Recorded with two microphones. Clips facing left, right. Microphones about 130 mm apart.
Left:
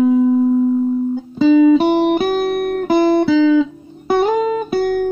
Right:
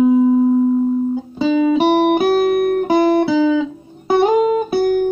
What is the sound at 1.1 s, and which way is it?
Music, centre (ahead or behind).